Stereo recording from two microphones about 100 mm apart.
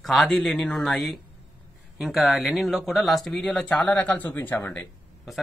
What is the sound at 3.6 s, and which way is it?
Speech, 15° left (ahead or behind).